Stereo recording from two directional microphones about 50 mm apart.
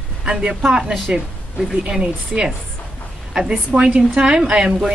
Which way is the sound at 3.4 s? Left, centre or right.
Centre.